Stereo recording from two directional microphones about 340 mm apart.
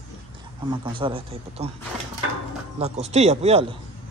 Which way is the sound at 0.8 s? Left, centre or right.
Centre.